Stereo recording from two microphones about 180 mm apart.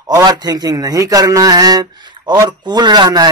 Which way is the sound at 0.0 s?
20° right (ahead or behind).